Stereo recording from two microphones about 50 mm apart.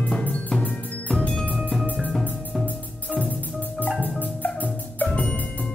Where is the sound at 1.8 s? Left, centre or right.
Right.